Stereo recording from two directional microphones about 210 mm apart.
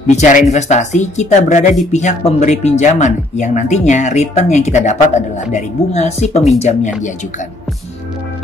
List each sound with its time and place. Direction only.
0.1 s speech: 35° left (ahead or behind)